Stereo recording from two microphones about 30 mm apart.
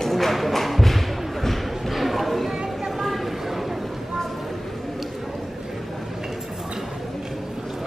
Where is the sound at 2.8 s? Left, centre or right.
Centre.